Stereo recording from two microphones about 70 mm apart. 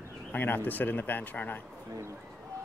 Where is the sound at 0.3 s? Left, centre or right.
Left.